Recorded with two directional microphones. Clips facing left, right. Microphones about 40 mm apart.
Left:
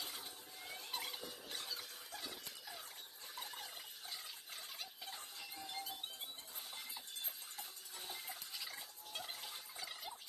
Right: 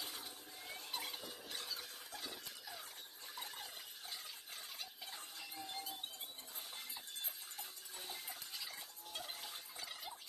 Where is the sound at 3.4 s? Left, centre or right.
Centre.